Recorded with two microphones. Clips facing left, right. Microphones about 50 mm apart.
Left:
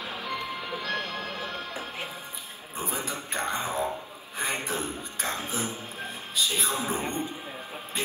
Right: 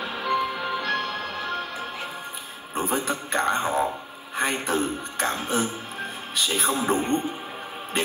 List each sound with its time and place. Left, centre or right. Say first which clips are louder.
0.0 s music: right 8 dB; right
2.7 s a man's voice: right 7 dB; right